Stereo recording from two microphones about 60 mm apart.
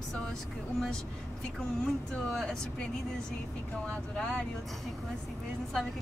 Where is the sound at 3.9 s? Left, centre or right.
Centre.